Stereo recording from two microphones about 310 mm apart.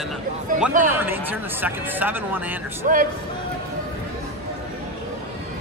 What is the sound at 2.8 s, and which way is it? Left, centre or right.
Speech, right.